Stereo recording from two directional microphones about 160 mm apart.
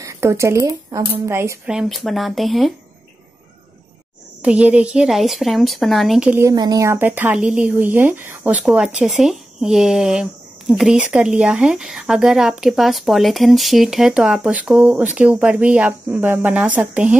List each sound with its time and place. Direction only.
0.0 s a woman's voice: 15° right (ahead or behind)
1.7 s a woman's voice: centre (ahead or behind)
4.4 s a woman's voice: 10° right (ahead or behind)
6.4 s a woman's voice: 25° right (ahead or behind)